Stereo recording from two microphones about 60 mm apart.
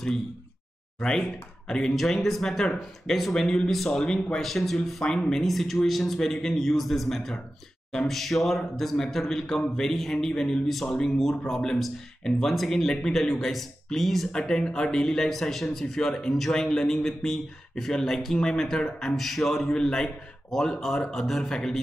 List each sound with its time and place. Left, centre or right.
0.9 s a man's voice: centre